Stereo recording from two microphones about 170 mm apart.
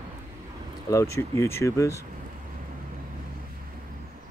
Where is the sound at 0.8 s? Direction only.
20° left (ahead or behind).